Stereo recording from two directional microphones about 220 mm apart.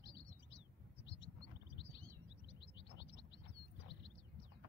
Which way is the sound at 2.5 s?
50° left (ahead or behind).